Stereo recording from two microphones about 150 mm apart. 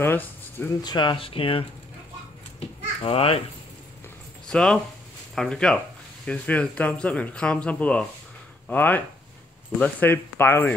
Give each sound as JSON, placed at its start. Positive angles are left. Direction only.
{"t": 0.0, "sound": "speech", "side_deg": 15}
{"t": 0.8, "sound": "speech", "side_deg": 30}
{"t": 3.0, "sound": "speech", "side_deg": 40}
{"t": 4.5, "sound": "speech", "side_deg": 5}